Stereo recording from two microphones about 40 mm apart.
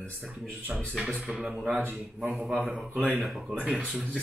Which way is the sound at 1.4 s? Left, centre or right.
Centre.